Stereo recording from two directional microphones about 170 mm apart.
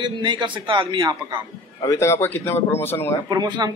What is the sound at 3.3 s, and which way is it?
Speech, 25° right (ahead or behind).